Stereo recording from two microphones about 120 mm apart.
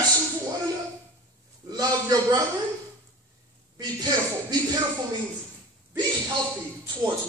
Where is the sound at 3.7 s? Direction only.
30° right (ahead or behind).